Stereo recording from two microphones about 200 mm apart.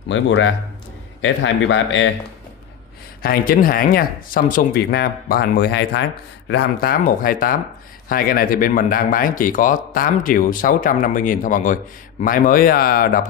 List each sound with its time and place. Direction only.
0.1 s speech: 70° left (ahead or behind)
3.2 s speech: 45° left (ahead or behind)